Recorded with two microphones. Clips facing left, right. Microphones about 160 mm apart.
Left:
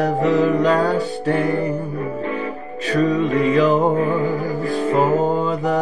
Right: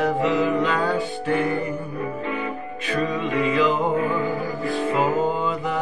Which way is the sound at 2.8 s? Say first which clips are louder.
Left 7 dB; 40° left (ahead or behind).